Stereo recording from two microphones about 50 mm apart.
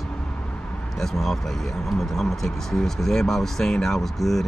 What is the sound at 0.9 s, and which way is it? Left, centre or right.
Speech, centre.